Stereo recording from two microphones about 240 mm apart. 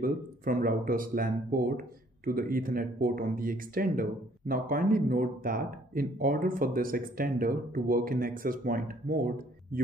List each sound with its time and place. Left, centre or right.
0.0 s speech: right